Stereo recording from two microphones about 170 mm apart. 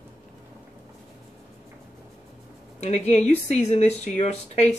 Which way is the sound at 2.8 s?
40° left (ahead or behind).